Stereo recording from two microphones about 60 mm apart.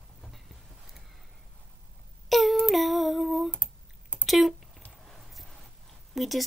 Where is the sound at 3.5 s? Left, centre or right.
Left.